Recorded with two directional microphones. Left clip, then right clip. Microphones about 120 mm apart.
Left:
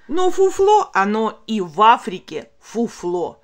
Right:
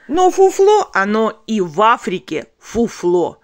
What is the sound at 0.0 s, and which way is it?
Speech, 35° right (ahead or behind).